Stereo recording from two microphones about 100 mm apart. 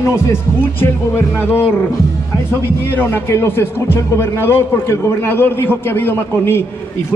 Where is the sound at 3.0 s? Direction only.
20° left (ahead or behind).